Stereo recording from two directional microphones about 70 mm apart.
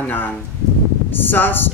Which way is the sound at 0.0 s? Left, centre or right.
Left.